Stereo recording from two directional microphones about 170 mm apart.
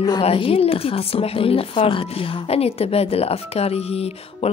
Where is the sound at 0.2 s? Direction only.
35° left (ahead or behind).